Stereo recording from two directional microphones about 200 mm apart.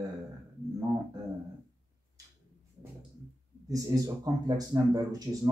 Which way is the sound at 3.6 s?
20° right (ahead or behind).